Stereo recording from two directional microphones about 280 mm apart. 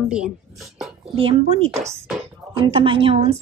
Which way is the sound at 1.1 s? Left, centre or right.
Centre.